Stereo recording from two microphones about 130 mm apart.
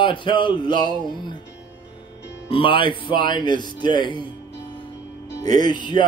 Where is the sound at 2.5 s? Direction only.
40° left (ahead or behind).